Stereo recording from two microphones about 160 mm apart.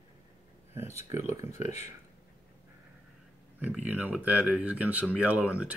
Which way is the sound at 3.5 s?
10° right (ahead or behind).